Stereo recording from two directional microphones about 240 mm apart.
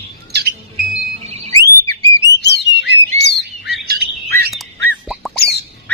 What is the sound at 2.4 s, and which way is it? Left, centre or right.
Bird, left.